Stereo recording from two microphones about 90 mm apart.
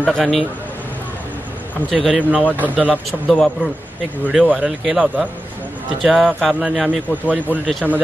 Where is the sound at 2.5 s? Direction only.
20° right (ahead or behind).